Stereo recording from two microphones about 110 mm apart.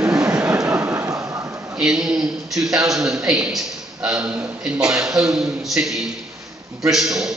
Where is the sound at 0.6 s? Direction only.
30° right (ahead or behind).